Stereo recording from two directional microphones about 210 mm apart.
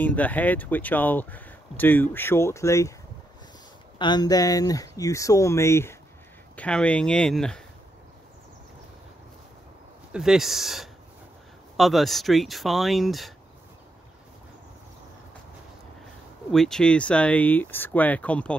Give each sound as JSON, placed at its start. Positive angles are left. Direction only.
{"t": 0.0, "sound": "speech", "side_deg": 5}
{"t": 4.0, "sound": "speech", "side_deg": 20}
{"t": 10.1, "sound": "speech", "side_deg": 0}
{"t": 16.5, "sound": "speech", "side_deg": 5}